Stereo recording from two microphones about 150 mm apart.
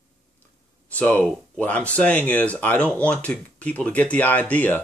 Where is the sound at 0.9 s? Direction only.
10° left (ahead or behind).